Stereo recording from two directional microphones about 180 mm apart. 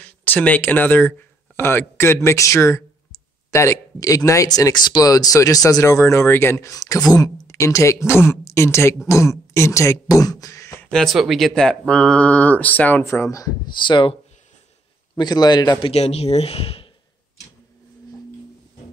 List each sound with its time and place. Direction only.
0.0 s speech: 10° left (ahead or behind)
10.9 s speech: centre (ahead or behind); by 14.1 s 25° left (ahead or behind)
15.1 s speech: 20° left (ahead or behind)
15.9 s speech: 35° left (ahead or behind)